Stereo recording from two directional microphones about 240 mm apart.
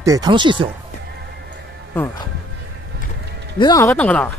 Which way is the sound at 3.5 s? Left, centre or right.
Centre.